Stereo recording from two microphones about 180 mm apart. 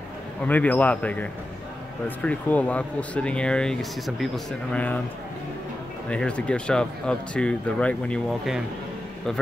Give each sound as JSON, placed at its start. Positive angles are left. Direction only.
{"t": 0.4, "sound": "speech", "side_deg": 10}
{"t": 6.0, "sound": "speech", "side_deg": 5}